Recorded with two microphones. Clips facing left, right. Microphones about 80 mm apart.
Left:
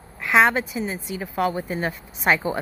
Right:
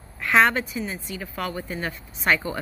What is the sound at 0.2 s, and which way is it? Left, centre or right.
Speech, centre.